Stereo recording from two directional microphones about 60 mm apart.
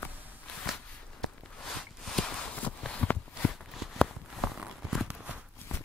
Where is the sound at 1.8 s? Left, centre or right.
Centre.